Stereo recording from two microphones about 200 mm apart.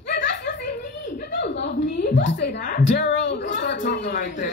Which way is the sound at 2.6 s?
40° left (ahead or behind).